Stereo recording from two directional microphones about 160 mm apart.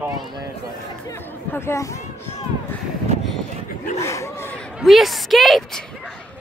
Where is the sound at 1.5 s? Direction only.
15° left (ahead or behind).